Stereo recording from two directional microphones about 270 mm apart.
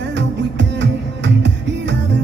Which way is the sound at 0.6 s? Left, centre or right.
Right.